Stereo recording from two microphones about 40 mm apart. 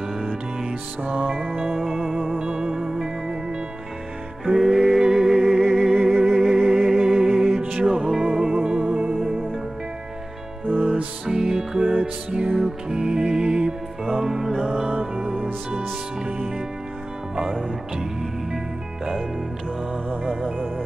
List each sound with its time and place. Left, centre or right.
1.0 s music: right
1.6 s music: centre
2.3 s music: centre
4.5 s music: centre
10.7 s music: right
16.3 s music: right